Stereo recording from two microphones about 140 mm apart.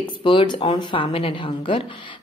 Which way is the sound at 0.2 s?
35° left (ahead or behind).